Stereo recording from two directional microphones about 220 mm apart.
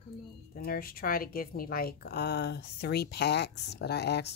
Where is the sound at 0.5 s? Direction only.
40° left (ahead or behind).